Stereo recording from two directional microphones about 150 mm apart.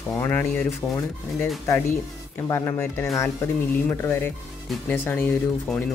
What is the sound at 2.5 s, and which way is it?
Speech, 15° left (ahead or behind).